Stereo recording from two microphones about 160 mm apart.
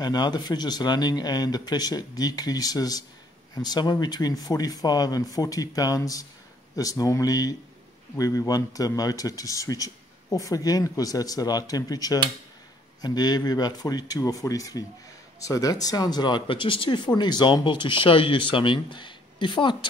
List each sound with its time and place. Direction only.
0.0 s speech: 25° left (ahead or behind)